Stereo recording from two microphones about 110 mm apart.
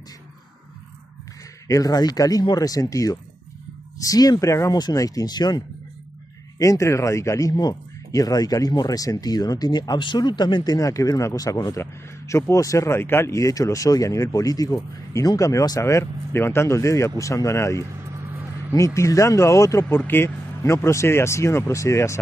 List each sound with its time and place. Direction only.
1.7 s speech: 35° left (ahead or behind)
6.6 s speech: 30° left (ahead or behind)
18.9 s speech: 30° left (ahead or behind)